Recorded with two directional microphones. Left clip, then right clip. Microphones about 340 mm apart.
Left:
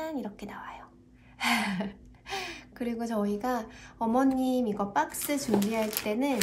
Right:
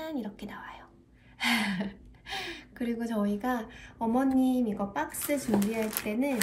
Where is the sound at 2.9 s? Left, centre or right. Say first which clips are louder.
Left 2 dB; centre.